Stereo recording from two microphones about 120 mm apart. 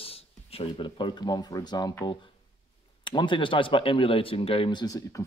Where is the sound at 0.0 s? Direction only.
55° left (ahead or behind).